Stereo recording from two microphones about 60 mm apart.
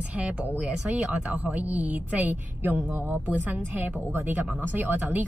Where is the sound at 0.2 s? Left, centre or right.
Right.